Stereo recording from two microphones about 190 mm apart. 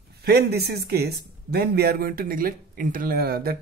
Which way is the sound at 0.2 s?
55° right (ahead or behind).